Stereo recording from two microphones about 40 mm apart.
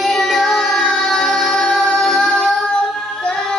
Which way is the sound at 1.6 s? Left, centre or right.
Centre.